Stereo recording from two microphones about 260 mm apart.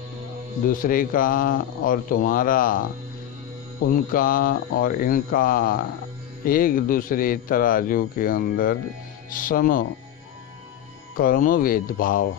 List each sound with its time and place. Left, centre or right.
0.7 s speech: left
11.1 s speech: left